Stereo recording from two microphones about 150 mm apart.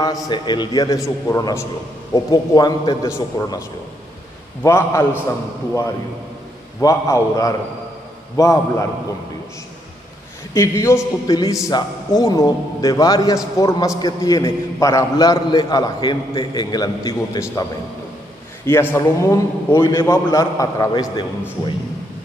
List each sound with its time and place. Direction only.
0.0 s a man's voice: 25° left (ahead or behind)
4.6 s a man's voice: 15° left (ahead or behind)
6.8 s a man's voice: 20° left (ahead or behind)
10.5 s a man's voice: 20° left (ahead or behind)
18.7 s a man's voice: 15° left (ahead or behind)